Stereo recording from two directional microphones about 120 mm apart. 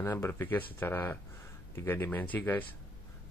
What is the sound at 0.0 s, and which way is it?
Speech, 20° left (ahead or behind).